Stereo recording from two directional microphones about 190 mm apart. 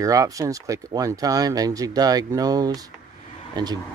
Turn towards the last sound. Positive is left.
turn(degrees=-20)  # may be behind; listen again after turning